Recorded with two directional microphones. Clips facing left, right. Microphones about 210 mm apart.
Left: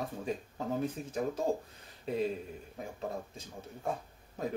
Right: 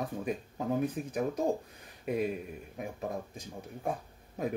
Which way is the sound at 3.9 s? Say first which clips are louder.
Right 1 dB; 15° right (ahead or behind).